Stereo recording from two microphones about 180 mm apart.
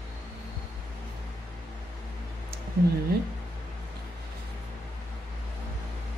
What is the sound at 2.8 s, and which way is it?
Speech, 60° right (ahead or behind).